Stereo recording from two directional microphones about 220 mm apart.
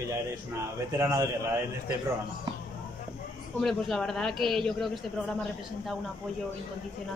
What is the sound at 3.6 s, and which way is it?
Speech, centre (ahead or behind).